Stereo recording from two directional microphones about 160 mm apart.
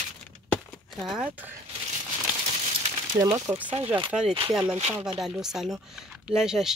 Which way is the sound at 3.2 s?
25° right (ahead or behind).